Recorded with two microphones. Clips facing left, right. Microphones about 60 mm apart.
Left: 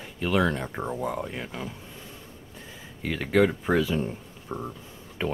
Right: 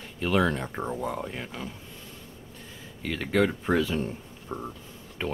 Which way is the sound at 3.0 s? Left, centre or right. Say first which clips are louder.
Left 3 dB; centre.